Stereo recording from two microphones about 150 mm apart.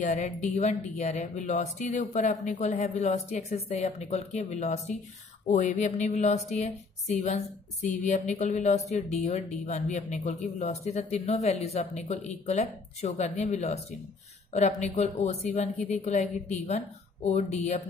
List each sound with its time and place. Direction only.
0.0 s speech: 50° left (ahead or behind)